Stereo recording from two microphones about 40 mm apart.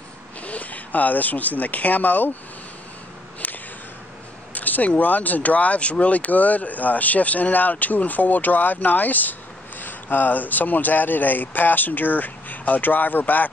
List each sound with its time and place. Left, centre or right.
0.4 s speech: left
3.4 s a sound: left
4.6 s speech: left